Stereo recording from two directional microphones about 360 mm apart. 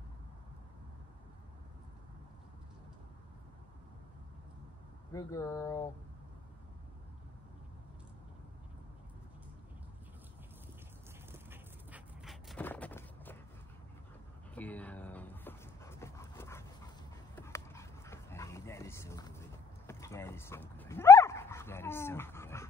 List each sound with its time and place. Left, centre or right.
5.1 s speech: centre
11.3 s dog: centre
14.5 s dog: centre